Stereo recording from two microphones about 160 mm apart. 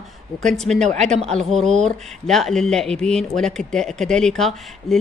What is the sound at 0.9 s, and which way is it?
Speech, 45° right (ahead or behind).